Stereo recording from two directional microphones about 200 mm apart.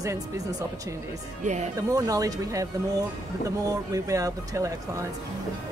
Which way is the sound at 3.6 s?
15° right (ahead or behind).